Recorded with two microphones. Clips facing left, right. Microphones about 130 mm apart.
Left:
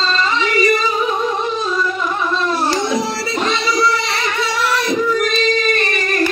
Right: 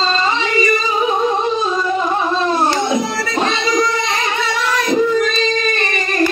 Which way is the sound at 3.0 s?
30° left (ahead or behind).